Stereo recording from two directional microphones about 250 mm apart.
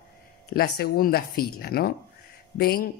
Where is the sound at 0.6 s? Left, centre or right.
Left.